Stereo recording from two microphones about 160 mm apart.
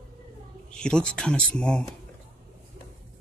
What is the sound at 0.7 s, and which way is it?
Speech, 5° left (ahead or behind).